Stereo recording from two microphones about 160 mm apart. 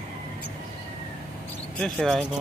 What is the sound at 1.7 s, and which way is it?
Speech, 5° left (ahead or behind).